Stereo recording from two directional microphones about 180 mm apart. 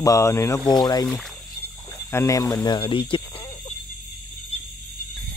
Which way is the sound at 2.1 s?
15° left (ahead or behind).